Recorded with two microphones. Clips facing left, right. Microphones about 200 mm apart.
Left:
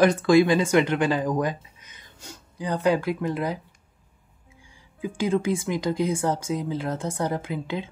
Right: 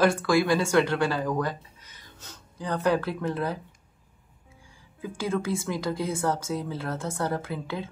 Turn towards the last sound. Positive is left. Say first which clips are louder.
# left 3 dB
turn(degrees=15)  # may be behind; listen again after turning